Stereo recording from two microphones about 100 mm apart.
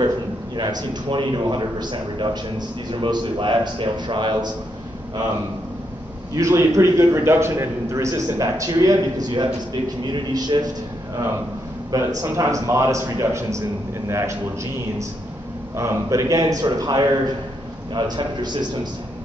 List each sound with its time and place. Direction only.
0.6 s a man's voice: 45° right (ahead or behind)
6.3 s a man's voice: 35° right (ahead or behind)
11.9 s a man's voice: 35° right (ahead or behind)